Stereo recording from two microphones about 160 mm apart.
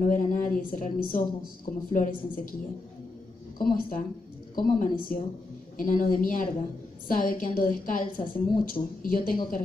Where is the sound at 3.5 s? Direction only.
65° left (ahead or behind).